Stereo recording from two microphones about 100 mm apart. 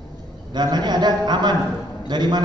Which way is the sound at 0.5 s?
45° right (ahead or behind).